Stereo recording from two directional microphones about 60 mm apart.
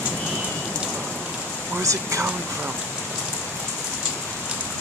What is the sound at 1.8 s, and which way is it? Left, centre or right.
Speech, right.